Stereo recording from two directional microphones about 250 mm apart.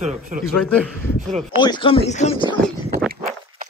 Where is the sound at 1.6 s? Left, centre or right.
Centre.